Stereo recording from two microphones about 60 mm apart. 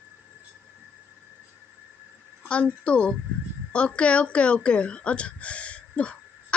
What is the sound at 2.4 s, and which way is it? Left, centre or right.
Speech, centre.